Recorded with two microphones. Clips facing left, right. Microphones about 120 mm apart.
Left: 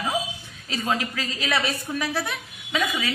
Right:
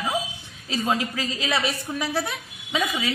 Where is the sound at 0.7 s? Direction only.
25° right (ahead or behind).